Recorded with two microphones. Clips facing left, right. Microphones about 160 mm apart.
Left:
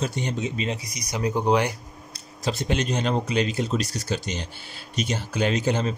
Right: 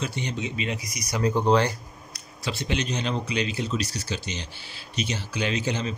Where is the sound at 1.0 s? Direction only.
20° left (ahead or behind).